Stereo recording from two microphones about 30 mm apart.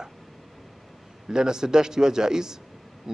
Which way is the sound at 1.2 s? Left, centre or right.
Right.